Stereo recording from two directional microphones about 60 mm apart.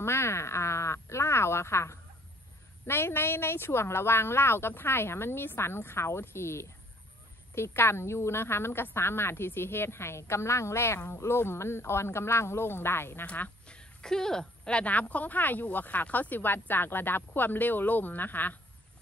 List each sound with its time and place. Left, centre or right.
0.0 s a sound: left
2.9 s a woman's voice: left
13.2 s speech: left